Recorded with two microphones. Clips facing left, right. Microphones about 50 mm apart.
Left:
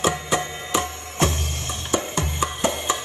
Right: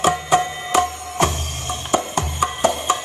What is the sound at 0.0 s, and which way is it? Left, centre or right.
Music, right.